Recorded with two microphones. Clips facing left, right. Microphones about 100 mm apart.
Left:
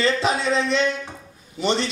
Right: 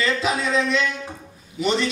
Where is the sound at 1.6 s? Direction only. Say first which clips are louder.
Even; 30° left (ahead or behind).